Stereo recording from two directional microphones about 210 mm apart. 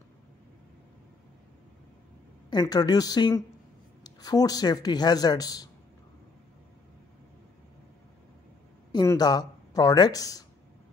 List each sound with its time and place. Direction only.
2.5 s speech: 20° left (ahead or behind)
8.9 s speech: 20° left (ahead or behind)